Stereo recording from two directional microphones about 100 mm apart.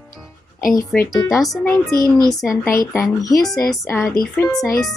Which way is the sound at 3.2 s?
35° left (ahead or behind).